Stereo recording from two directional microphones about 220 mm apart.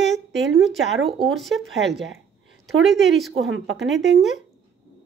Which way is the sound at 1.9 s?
55° right (ahead or behind).